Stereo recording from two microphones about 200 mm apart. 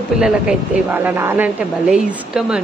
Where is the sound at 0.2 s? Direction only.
5° right (ahead or behind).